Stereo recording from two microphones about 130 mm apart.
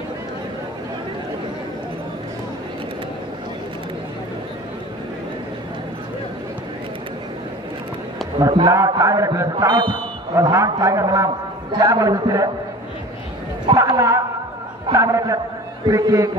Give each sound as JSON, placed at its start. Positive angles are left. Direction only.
{"t": 8.4, "sound": "a man's voice", "side_deg": -30}
{"t": 10.3, "sound": "a man's voice", "side_deg": -25}
{"t": 13.7, "sound": "a man's voice", "side_deg": -25}